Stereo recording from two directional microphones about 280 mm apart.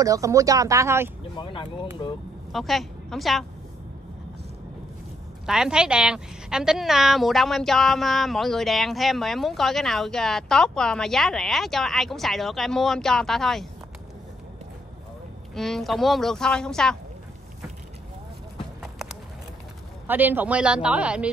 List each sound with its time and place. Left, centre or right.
0.0 s speech: centre
1.4 s speech: centre
2.5 s a woman's voice: centre
5.5 s a woman's voice: centre
15.5 s a woman's voice: centre
18.8 s clip-clop: centre
20.1 s a woman's voice: centre